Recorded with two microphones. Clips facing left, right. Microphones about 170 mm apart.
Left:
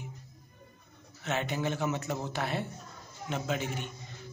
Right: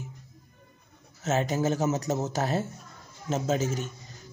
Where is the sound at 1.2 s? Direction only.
40° right (ahead or behind).